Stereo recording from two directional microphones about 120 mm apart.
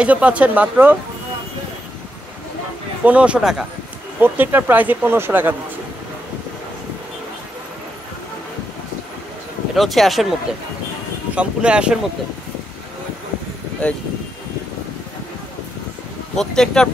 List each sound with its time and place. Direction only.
0.0 s speech: 10° right (ahead or behind)
3.1 s speech: 10° right (ahead or behind)
4.2 s speech: 15° right (ahead or behind)
9.8 s speech: centre (ahead or behind)
11.3 s speech: 10° right (ahead or behind)
13.8 s speech: 10° left (ahead or behind)
16.3 s speech: 5° left (ahead or behind)